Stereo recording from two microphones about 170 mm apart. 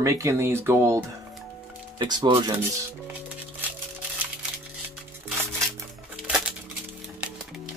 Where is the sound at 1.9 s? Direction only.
25° right (ahead or behind).